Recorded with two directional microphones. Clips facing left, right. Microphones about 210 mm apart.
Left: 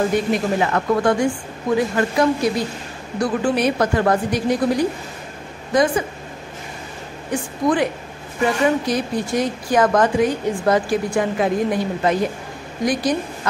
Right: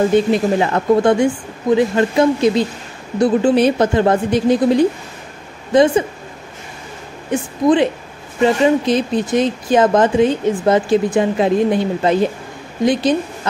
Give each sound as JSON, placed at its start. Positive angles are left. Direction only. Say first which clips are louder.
{"t": 0.1, "sound": "speech", "louder": "right 5 dB", "side_deg": -25}
{"t": 7.2, "sound": "speech", "louder": "right 5 dB", "side_deg": -25}